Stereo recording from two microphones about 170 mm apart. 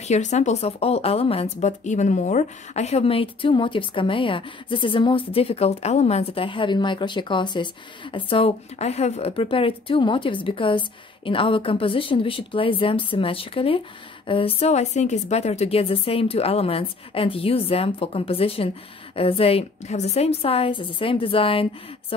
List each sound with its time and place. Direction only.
0.1 s speech: 45° left (ahead or behind)